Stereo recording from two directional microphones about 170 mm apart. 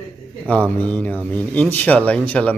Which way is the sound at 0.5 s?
10° left (ahead or behind).